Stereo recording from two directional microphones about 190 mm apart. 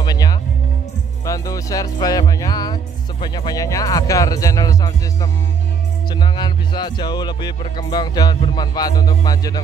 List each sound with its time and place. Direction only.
0.0 s music: 20° left (ahead or behind)
1.2 s speech: 15° left (ahead or behind)